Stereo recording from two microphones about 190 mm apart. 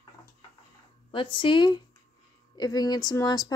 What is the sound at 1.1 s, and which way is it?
Speech, 25° left (ahead or behind).